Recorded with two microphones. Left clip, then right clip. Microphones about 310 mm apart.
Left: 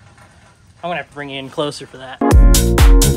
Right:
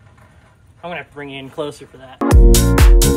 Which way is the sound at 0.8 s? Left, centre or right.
Left.